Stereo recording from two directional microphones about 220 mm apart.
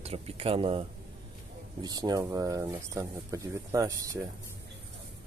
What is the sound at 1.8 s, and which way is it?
Speech, 20° right (ahead or behind).